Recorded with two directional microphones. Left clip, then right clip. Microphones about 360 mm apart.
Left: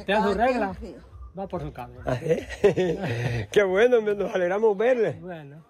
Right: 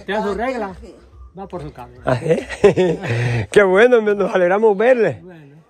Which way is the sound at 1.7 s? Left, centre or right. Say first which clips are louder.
Right 12 dB; centre.